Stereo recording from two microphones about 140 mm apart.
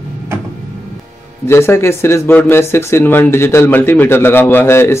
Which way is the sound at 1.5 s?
20° left (ahead or behind).